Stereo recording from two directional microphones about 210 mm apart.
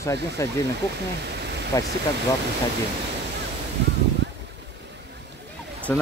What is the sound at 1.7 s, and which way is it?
Speech, 15° left (ahead or behind).